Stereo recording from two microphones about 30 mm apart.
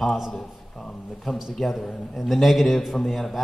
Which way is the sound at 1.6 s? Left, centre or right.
Centre.